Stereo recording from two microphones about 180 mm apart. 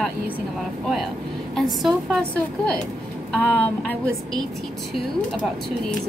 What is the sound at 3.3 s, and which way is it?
A woman's voice, 10° left (ahead or behind).